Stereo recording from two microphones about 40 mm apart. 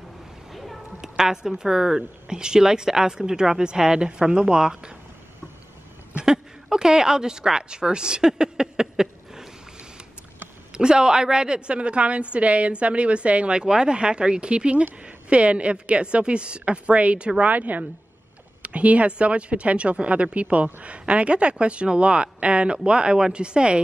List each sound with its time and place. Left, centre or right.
0.5 s a sound: centre
1.0 s speech: centre
6.2 s a woman's voice: centre
10.7 s a woman's voice: right